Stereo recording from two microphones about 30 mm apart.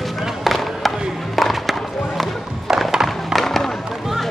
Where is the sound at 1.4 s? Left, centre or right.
Centre.